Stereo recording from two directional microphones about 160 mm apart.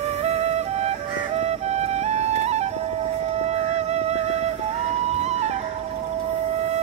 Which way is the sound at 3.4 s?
45° right (ahead or behind).